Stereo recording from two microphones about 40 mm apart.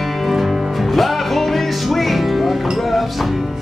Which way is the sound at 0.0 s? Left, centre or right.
Centre.